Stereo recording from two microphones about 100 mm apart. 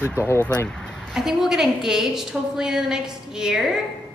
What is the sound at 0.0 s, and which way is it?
Speech, 20° left (ahead or behind).